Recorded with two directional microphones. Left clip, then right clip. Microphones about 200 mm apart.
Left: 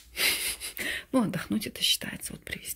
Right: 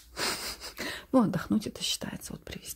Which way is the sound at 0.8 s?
10° right (ahead or behind).